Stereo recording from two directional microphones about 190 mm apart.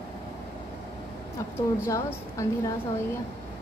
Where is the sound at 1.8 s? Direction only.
15° left (ahead or behind).